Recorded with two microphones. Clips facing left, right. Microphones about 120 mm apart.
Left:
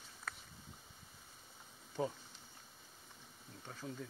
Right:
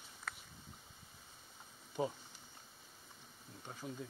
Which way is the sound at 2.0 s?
15° right (ahead or behind).